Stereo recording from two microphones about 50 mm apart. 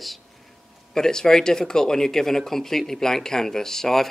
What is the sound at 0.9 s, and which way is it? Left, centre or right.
Speech, centre.